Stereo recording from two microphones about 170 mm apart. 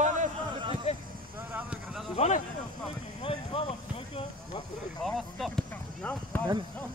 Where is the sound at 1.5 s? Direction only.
5° right (ahead or behind).